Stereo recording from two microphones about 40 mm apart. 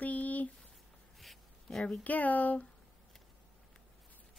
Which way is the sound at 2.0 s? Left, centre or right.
Left.